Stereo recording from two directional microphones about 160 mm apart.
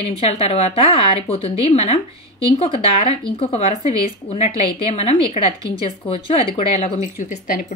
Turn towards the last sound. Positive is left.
turn(degrees=55)  # may be behind; listen again after turning